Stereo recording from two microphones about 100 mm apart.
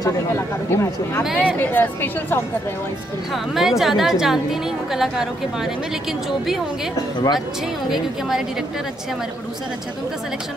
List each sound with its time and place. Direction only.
0.7 s speech: 25° left (ahead or behind)
3.5 s a woman's voice: 5° right (ahead or behind)